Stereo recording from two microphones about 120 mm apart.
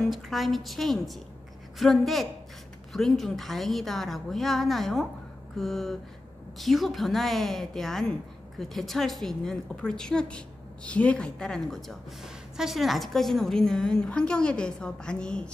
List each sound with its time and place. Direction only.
0.0 s a woman's voice: centre (ahead or behind)